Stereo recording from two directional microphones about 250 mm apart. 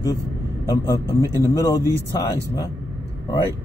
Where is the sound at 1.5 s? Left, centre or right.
Centre.